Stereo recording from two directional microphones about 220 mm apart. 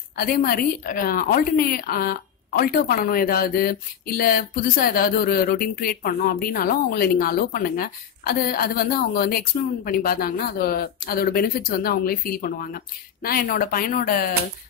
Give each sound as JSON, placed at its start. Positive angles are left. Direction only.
{"t": 0.1, "sound": "a woman's voice", "side_deg": 45}